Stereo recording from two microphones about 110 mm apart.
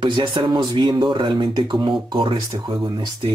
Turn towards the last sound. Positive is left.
turn(degrees=-40)  # may be behind; listen again after turning